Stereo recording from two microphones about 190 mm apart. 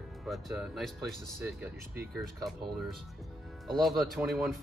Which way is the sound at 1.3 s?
10° right (ahead or behind).